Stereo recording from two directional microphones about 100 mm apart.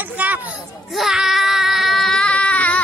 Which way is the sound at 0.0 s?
15° right (ahead or behind).